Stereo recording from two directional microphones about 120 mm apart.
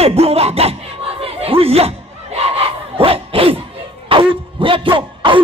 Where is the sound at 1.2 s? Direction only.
55° right (ahead or behind).